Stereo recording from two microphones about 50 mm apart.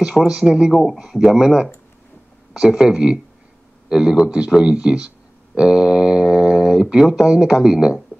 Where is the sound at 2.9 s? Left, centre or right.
Centre.